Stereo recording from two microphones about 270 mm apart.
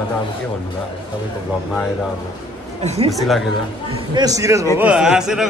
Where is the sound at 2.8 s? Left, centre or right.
Right.